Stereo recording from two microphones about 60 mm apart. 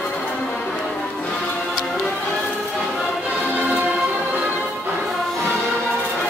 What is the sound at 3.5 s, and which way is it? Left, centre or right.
Music, right.